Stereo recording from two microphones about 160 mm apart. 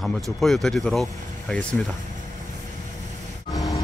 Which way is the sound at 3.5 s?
20° left (ahead or behind).